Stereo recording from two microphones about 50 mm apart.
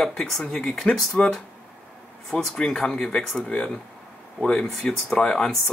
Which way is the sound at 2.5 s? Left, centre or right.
Centre.